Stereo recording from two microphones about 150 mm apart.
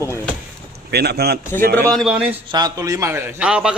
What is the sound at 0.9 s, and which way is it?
Speech, 90° right.